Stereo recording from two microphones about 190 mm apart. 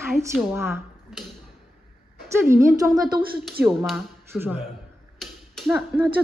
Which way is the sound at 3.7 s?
Centre (ahead or behind).